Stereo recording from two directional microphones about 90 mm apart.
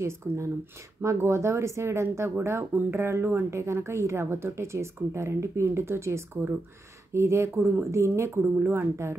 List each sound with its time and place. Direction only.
0.2 s speech: 20° right (ahead or behind)
1.0 s speech: 30° right (ahead or behind)